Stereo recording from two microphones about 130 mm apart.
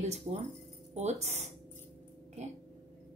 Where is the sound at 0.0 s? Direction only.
55° right (ahead or behind).